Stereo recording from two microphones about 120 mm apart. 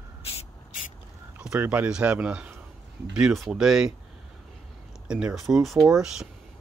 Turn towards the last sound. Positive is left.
turn(degrees=-5)  # may be behind; listen again after turning